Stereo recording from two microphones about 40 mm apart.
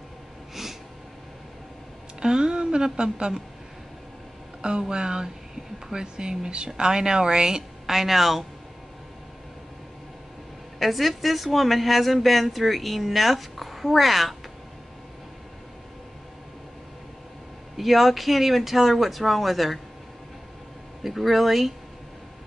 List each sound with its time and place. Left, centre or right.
2.1 s speech: right
4.6 s speech: right; by 8.5 s centre
10.8 s a woman's voice: centre
17.7 s a woman's voice: centre
21.0 s a woman's voice: centre